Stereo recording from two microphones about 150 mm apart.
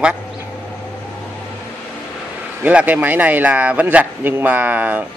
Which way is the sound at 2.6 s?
10° right (ahead or behind).